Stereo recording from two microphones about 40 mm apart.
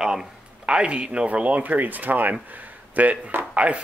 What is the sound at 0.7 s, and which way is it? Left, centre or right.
Speech, right.